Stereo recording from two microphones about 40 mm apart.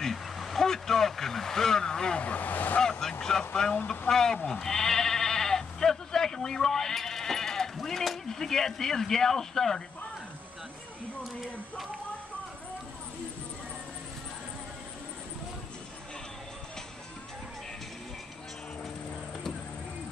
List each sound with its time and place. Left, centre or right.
0.0 s vehicle: centre
2.1 s speech: left
2.8 s speech: centre
3.7 s speech: left
4.1 s speech: centre
4.5 s sheep: centre
8.3 s speech: centre